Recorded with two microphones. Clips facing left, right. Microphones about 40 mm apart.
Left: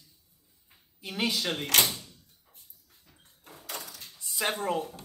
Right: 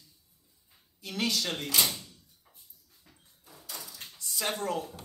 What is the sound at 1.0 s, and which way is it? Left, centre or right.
Speech, centre.